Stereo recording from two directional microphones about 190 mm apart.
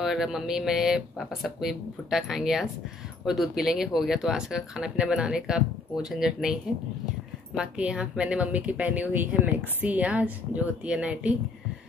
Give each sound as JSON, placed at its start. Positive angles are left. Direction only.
{"t": 0.0, "sound": "a woman's voice", "side_deg": 0}